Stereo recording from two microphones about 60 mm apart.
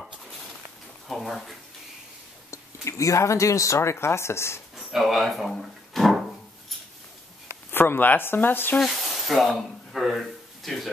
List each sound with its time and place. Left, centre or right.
1.0 s speech: centre
2.5 s speech: left
4.7 s speech: centre
5.6 s a sound: centre
7.7 s speech: left
8.7 s speech: centre